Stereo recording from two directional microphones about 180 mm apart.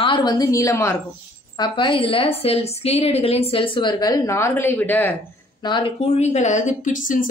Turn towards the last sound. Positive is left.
turn(degrees=45)  # may be behind; listen again after turning